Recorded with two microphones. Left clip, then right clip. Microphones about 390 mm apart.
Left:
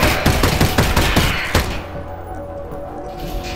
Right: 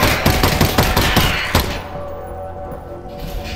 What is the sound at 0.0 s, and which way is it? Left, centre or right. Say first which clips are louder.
Fusillade: right 1 dB; centre.